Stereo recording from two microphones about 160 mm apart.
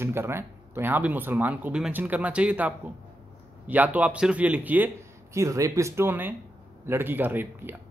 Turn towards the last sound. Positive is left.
turn(degrees=-10)  # may be behind; listen again after turning